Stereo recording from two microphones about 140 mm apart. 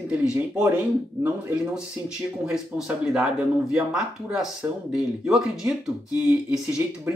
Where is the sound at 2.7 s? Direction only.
5° right (ahead or behind).